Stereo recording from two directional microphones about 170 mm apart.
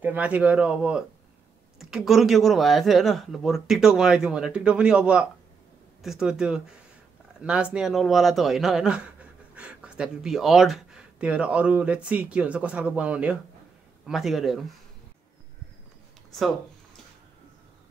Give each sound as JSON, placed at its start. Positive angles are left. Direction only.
{"t": 0.0, "sound": "speech", "side_deg": -10}